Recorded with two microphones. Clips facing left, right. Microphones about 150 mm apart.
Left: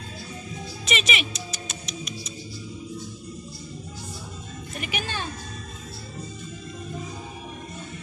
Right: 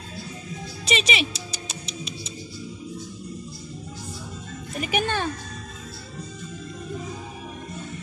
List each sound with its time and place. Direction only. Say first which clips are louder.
0.8 s music: right 3 dB; 35° right (ahead or behind)
4.7 s music: right 7 dB; 40° right (ahead or behind)
5.0 s music: right 7 dB; 55° right (ahead or behind)